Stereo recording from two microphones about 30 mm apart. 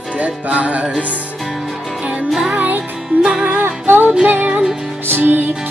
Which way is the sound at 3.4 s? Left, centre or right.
Right.